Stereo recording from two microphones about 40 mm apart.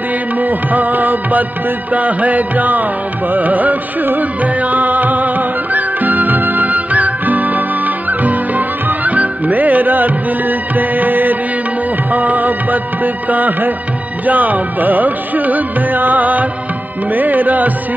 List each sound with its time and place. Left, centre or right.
0.4 s music: right